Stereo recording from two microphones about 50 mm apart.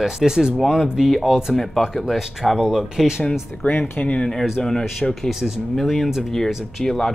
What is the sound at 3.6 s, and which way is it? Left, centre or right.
Speech, left.